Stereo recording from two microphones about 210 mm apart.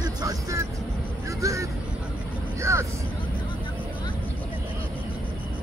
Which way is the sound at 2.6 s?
15° right (ahead or behind).